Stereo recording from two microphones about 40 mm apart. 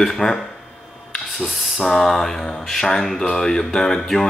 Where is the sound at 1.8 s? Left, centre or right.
Centre.